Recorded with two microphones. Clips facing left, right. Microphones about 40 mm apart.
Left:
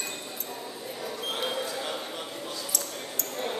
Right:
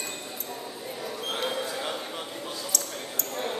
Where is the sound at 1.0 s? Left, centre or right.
Centre.